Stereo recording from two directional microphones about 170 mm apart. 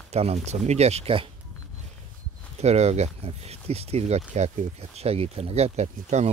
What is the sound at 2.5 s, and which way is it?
Speech, 40° right (ahead or behind).